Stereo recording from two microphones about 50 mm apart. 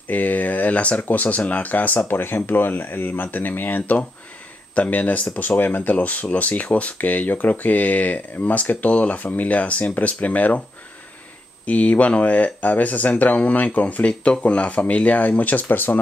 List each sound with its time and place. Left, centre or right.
0.1 s speech: left
11.6 s speech: left